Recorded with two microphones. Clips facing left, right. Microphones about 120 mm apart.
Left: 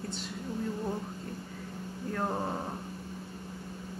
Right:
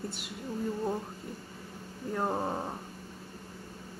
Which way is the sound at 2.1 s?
10° right (ahead or behind).